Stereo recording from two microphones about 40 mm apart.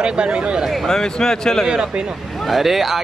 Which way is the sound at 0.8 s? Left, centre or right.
Centre.